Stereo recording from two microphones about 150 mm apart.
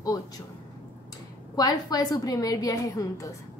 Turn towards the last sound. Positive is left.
turn(degrees=20)  # may be behind; listen again after turning